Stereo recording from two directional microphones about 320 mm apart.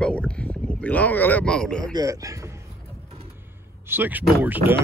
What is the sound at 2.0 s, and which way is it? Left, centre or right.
Speech, centre.